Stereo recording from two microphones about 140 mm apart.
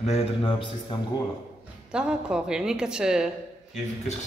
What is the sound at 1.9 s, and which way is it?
Speech, 5° right (ahead or behind).